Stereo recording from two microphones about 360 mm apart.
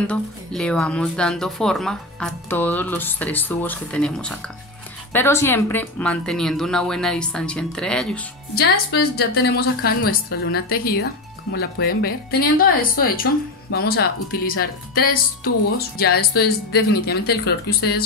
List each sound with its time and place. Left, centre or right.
0.0 s speech: centre
8.5 s speech: left